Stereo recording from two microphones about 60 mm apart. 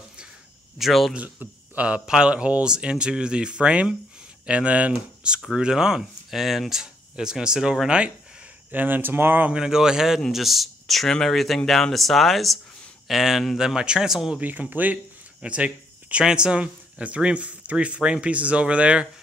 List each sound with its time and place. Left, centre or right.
0.7 s speech: centre
1.1 s a man's voice: right
2.0 s speech: centre
8.7 s speech: right
9.5 s speech: centre
14.4 s speech: right